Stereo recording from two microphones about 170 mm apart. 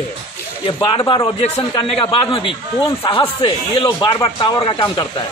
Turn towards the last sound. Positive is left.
turn(degrees=25)  # may be behind; listen again after turning